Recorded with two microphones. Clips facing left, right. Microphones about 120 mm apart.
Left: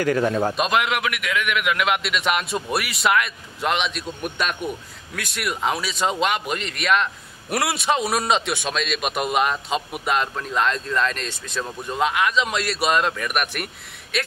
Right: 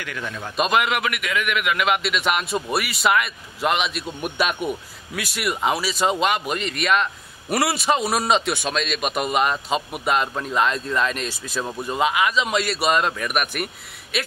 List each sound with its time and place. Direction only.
0.0 s a man's voice: 40° left (ahead or behind)
0.6 s a man's voice: centre (ahead or behind)